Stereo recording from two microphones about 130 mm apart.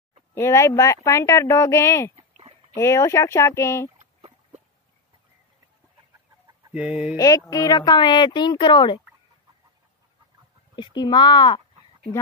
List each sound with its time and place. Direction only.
0.3 s speech: 20° left (ahead or behind)
4.0 s a sound: 50° right (ahead or behind)
6.7 s speech: 10° right (ahead or behind)
7.2 s speech: 25° left (ahead or behind)
10.8 s speech: 35° left (ahead or behind)